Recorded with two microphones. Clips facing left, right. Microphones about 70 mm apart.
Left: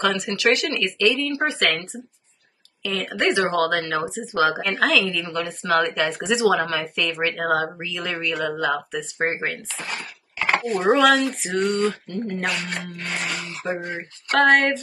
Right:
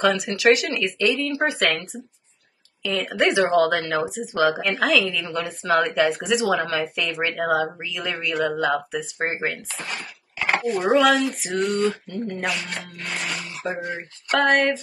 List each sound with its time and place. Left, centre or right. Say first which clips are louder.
0.0 s speech: right 2 dB; centre
1.4 s a woman's voice: right 1 dB; centre
3.3 s speech: right 2 dB; centre
3.7 s a woman's voice: even; centre
4.1 s speech: right 1 dB; left
4.7 s a woman's voice: even; centre